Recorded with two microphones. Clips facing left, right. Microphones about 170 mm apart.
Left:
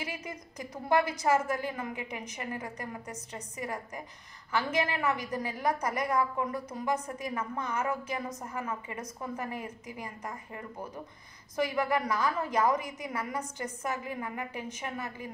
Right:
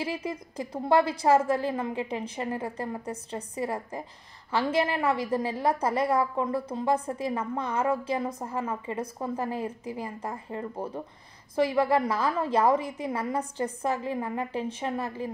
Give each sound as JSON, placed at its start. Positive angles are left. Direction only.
{"t": 0.0, "sound": "a woman's voice", "side_deg": -30}